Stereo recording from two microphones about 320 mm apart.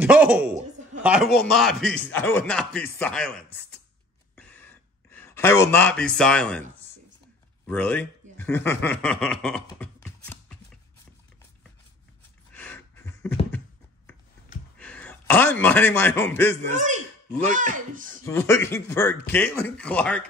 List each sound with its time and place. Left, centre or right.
0.0 s speech: centre
4.4 s a sound: centre
7.6 s speech: centre
12.5 s a sound: centre
14.8 s a man's voice: centre
16.7 s speech: right
18.2 s speech: centre